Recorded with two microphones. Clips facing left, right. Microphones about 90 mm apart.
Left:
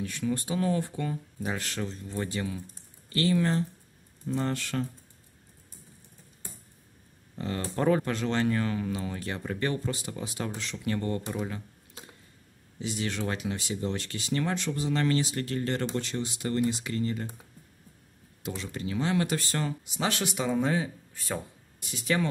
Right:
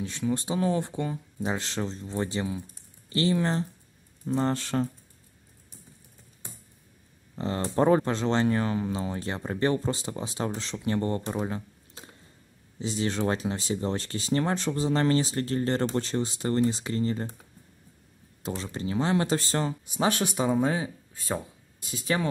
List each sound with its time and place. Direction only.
0.0 s speech: 25° right (ahead or behind)
7.3 s speech: 30° right (ahead or behind)
18.4 s speech: 30° right (ahead or behind)
21.8 s speech: 30° right (ahead or behind)